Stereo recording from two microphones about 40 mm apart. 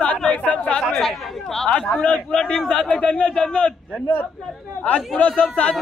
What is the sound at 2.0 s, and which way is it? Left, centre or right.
A man's voice, left.